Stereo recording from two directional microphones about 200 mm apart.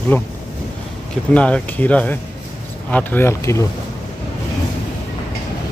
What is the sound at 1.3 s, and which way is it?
Speech, 5° left (ahead or behind).